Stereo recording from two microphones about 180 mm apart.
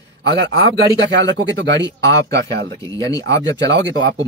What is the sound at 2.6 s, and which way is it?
Speech, 20° left (ahead or behind).